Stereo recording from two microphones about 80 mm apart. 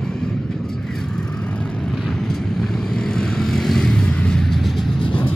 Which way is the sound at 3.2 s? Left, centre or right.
Centre.